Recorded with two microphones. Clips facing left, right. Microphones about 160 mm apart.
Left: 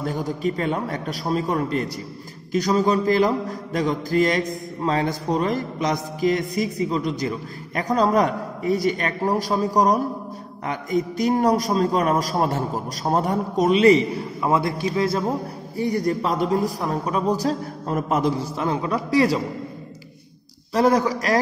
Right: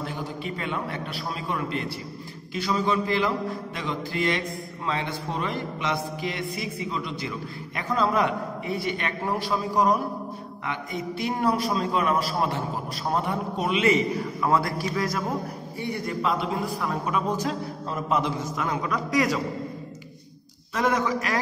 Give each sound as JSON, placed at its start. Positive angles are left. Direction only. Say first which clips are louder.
{"t": 0.0, "sound": "a man's voice", "louder": "left 8 dB", "side_deg": 40}
{"t": 14.4, "sound": "a man's voice", "louder": "left 3 dB", "side_deg": 20}
{"t": 17.8, "sound": "a man's voice", "louder": "left 5 dB", "side_deg": 50}
{"t": 20.7, "sound": "a man's voice", "louder": "left 6 dB", "side_deg": 35}